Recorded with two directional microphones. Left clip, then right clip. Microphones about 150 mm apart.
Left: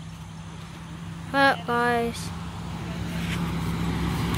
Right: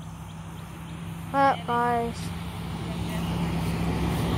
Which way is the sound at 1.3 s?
20° left (ahead or behind).